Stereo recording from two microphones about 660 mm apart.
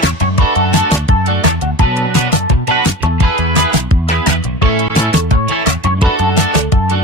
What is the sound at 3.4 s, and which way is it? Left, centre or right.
Music, right.